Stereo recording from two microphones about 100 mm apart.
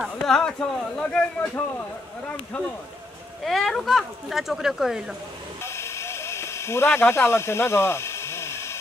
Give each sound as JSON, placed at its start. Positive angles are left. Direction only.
{"t": 0.0, "sound": "speech", "side_deg": 5}
{"t": 3.4, "sound": "speech", "side_deg": 5}
{"t": 5.6, "sound": "a sound", "side_deg": 25}